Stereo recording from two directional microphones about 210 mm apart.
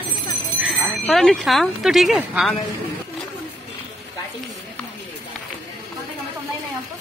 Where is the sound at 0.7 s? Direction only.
Centre (ahead or behind).